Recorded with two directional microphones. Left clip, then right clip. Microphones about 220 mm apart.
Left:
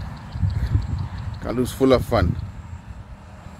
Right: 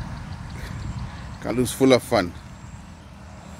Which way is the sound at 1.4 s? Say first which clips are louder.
Even; centre (ahead or behind).